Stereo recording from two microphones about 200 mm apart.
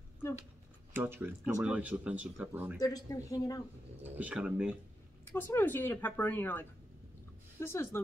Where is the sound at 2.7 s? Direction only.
20° left (ahead or behind).